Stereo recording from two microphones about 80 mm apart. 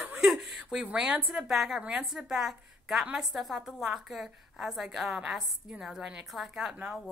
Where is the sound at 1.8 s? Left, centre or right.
Centre.